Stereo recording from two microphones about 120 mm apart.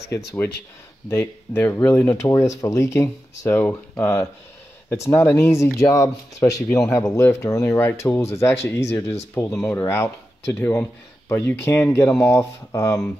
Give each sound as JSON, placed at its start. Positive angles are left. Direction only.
{"t": 0.1, "sound": "speech", "side_deg": 25}
{"t": 9.5, "sound": "speech", "side_deg": 10}
{"t": 9.8, "sound": "speech", "side_deg": 20}